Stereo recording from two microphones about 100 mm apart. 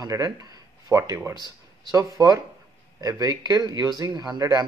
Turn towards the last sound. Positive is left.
turn(degrees=-40)  # may be behind; listen again after turning